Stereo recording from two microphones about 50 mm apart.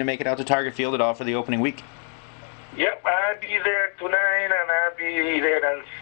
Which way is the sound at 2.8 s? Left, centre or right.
Right.